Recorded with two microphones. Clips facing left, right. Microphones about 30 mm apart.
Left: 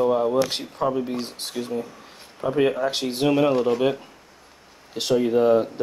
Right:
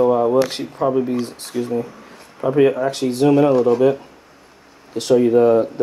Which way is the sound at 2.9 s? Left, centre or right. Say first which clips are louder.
Right 5 dB; left.